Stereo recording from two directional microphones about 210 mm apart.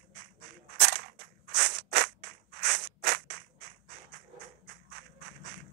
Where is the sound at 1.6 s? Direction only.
50° right (ahead or behind).